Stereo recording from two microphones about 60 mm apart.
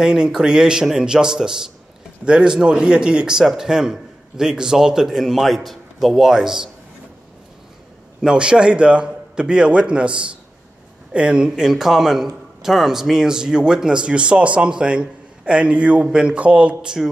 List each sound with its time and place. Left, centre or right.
0.0 s a man's voice: centre
8.2 s a man's voice: centre